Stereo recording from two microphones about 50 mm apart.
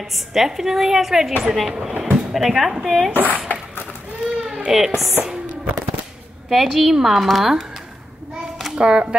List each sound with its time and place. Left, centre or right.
0.1 s a woman's voice: centre
3.2 s speech: right
4.4 s baby cry: centre
6.5 s a woman's voice: centre
8.7 s speech: centre